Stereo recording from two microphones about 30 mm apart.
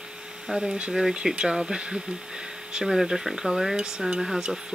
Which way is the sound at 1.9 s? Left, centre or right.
Right.